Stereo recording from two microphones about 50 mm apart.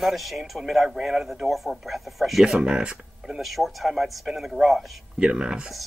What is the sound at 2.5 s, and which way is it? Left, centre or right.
Speech, centre.